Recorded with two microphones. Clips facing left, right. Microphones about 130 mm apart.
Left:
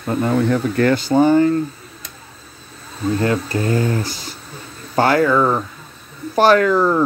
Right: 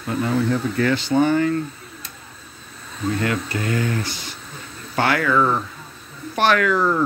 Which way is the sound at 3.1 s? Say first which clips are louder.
Left 6 dB; 35° left (ahead or behind).